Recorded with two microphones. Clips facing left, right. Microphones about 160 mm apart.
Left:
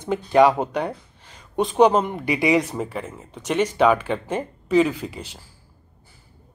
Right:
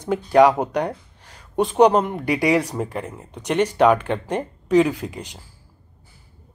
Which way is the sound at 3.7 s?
5° left (ahead or behind).